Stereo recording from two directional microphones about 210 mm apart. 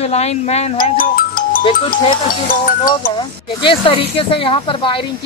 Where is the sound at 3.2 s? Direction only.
25° left (ahead or behind).